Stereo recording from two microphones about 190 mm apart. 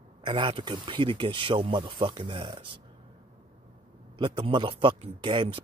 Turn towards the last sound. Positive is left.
turn(degrees=-25)  # may be behind; listen again after turning